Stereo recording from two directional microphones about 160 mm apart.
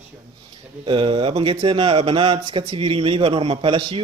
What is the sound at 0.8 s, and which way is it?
Speech, 30° right (ahead or behind).